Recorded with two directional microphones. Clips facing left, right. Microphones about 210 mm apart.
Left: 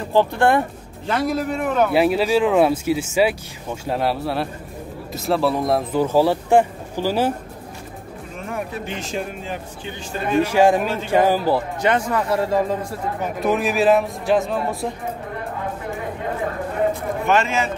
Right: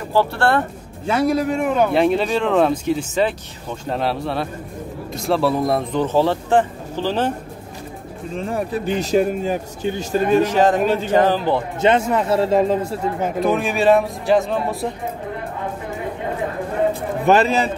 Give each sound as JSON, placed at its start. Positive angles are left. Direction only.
{"t": 0.1, "sound": "speech", "side_deg": 15}
{"t": 1.0, "sound": "speech", "side_deg": -5}
{"t": 1.8, "sound": "speech", "side_deg": 5}
{"t": 8.4, "sound": "speech", "side_deg": -35}
{"t": 10.4, "sound": "speech", "side_deg": 10}
{"t": 11.8, "sound": "speech", "side_deg": -25}
{"t": 13.4, "sound": "speech", "side_deg": 0}
{"t": 17.3, "sound": "speech", "side_deg": -35}